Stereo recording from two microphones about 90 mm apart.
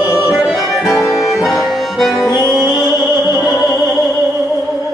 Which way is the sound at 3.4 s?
5° right (ahead or behind).